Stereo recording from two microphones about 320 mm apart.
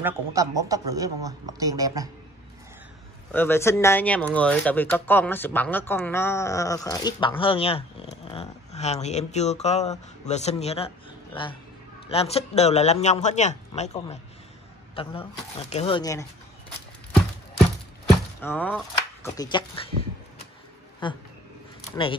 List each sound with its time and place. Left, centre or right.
0.0 s a woman's voice: centre
3.3 s speech: centre
12.1 s speech: centre
18.4 s speech: centre
21.0 s speech: centre